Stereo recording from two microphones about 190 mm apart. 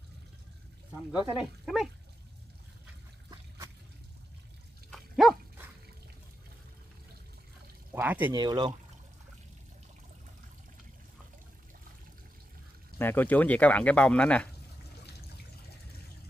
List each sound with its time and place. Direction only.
1.1 s speech: centre (ahead or behind)
3.3 s a sound: 20° right (ahead or behind)
4.9 s dog: centre (ahead or behind)
7.9 s speech: 10° right (ahead or behind)
8.3 s speech: 20° right (ahead or behind)
13.0 s speech: 10° left (ahead or behind)